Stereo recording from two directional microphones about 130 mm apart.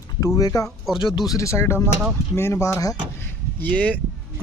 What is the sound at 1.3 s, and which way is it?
Speech, 25° left (ahead or behind).